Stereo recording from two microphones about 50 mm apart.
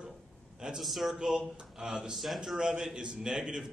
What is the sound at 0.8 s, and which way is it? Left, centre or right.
A man's voice, centre.